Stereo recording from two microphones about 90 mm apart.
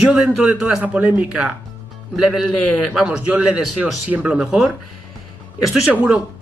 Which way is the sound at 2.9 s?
5° right (ahead or behind).